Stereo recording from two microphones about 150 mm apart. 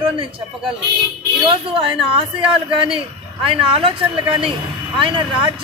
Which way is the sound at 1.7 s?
35° right (ahead or behind).